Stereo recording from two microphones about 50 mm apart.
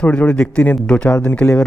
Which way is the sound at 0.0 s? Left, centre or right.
Left.